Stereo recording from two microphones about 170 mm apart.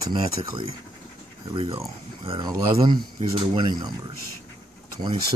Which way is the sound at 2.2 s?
30° right (ahead or behind).